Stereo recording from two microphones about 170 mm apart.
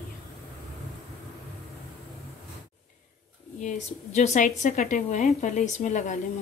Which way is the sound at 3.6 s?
45° left (ahead or behind).